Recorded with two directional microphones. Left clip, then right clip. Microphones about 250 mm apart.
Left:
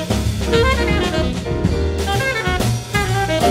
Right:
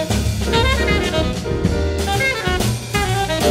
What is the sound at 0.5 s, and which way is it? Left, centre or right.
Jazz, left.